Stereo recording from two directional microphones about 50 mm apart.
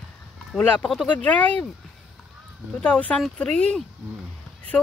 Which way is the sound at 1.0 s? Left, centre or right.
Left.